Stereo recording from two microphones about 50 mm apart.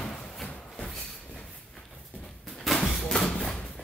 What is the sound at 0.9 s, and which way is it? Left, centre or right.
Vehicle, centre.